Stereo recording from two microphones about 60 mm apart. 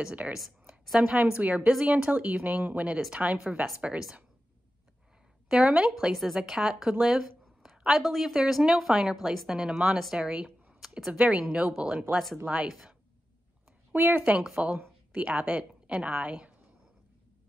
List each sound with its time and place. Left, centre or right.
0.0 s speech: right
0.3 s speech: centre
1.7 s speech: centre
5.5 s speech: centre
6.1 s a woman's voice: centre
9.6 s speech: centre
13.9 s speech: right
14.3 s a woman's voice: centre